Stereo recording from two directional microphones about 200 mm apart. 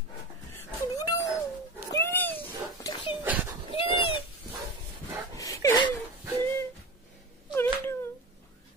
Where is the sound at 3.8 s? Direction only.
25° left (ahead or behind).